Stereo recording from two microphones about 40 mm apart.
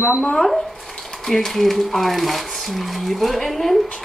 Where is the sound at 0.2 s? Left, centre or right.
Centre.